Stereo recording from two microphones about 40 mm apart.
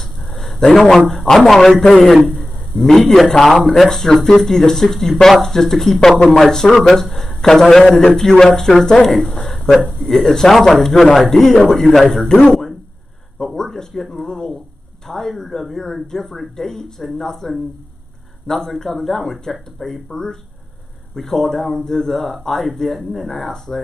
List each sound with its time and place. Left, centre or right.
0.0 s dog: centre
1.3 s a man's voice: centre
2.2 s a sound: centre
2.8 s a man's voice: centre
9.5 s a sound: centre
9.8 s speech: centre
10.2 s a man's voice: centre
12.3 s speech: centre
13.4 s a man's voice: centre